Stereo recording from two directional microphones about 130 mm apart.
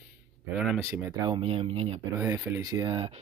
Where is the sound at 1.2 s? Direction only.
40° right (ahead or behind).